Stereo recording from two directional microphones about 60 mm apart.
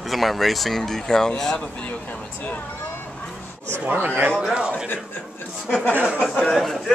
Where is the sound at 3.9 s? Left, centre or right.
Right.